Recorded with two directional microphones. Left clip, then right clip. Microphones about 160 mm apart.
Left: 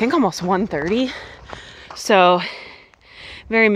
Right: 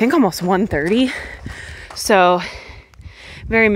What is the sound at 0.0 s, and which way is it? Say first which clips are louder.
Speech: right 2 dB; 50° right (ahead or behind).